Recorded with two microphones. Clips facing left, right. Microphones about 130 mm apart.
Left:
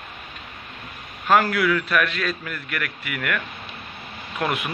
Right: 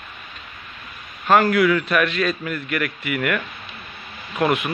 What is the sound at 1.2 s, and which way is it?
Speech, 5° left (ahead or behind).